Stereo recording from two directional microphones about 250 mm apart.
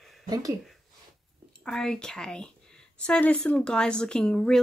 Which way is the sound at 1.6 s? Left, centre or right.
Centre.